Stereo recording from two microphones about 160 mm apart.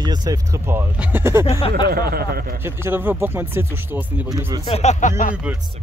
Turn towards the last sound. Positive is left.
turn(degrees=50)  # may be behind; listen again after turning